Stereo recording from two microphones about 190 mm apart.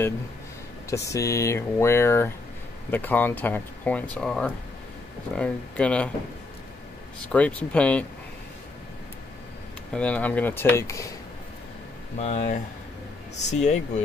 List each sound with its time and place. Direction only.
0.8 s speech: 15° left (ahead or behind)
7.3 s speech: 5° left (ahead or behind)
9.9 s speech: 5° left (ahead or behind)
12.2 s speech: 35° left (ahead or behind)